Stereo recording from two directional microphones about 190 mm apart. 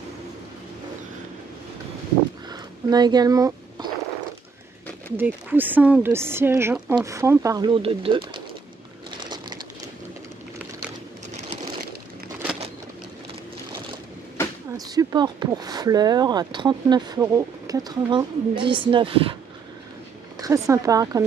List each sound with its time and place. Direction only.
2.5 s a sound: 20° right (ahead or behind)
5.1 s a woman's voice: 10° right (ahead or behind); by 8.2 s 30° right (ahead or behind)
9.2 s crumpling: 25° right (ahead or behind)
14.7 s speech: 20° right (ahead or behind)
20.3 s speech: 15° right (ahead or behind)